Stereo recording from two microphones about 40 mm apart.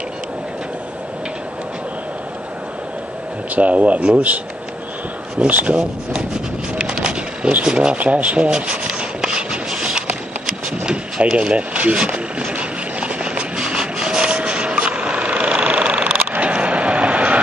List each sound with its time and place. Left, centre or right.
3.5 s speech: right
5.5 s speech: right
5.8 s rub: right
6.9 s a sound: right
7.6 s rub: right
8.0 s speech: right
8.5 s rub: right
10.9 s speech: right
12.4 s vehicle: right
16.3 s a sound: right